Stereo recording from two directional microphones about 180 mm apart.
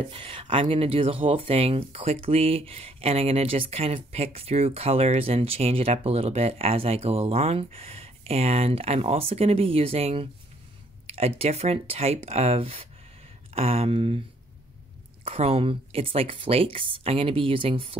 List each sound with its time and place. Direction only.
0.1 s speech: 30° right (ahead or behind)
15.2 s speech: 35° right (ahead or behind)